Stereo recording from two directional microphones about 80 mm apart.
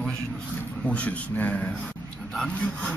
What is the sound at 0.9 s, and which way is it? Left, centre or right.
Speech, centre.